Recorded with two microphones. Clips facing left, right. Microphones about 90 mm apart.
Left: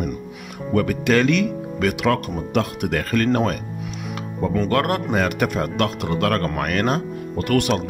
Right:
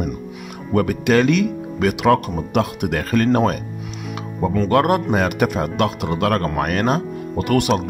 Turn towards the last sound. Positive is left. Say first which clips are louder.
# right 2 dB
turn(degrees=-15)  # may be behind; listen again after turning